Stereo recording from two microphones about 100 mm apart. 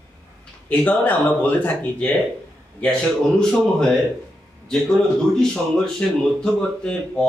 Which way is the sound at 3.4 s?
10° left (ahead or behind).